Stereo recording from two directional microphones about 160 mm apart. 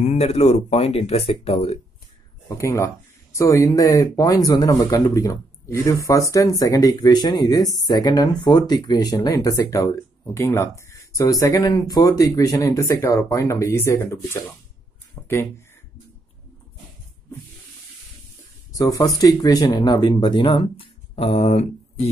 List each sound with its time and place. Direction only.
0.0 s speech: 45° left (ahead or behind)
2.4 s speech: 20° left (ahead or behind)
15.2 s a sound: 10° left (ahead or behind)
18.7 s speech: 20° left (ahead or behind); by 22.1 s 40° left (ahead or behind)